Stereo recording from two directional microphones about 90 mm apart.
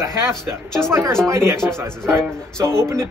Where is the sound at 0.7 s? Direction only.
5° left (ahead or behind).